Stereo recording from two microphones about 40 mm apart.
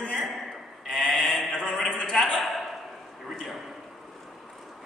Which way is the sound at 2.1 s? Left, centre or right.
Centre.